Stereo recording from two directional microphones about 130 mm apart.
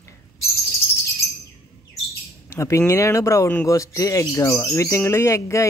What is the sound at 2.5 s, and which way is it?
Speech, 20° left (ahead or behind).